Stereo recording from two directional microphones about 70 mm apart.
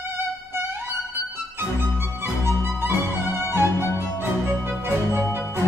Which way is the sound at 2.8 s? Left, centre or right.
Right.